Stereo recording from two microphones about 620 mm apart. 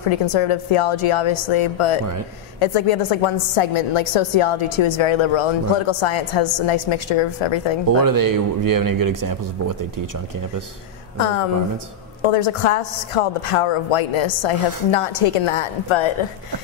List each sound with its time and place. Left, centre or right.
0.1 s a woman's voice: left
8.0 s speech: right
11.1 s a woman's voice: left